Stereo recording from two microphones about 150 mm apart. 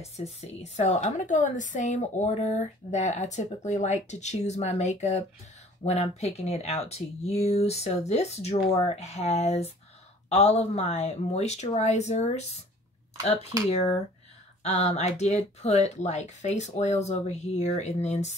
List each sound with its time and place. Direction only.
0.2 s speech: 45° left (ahead or behind)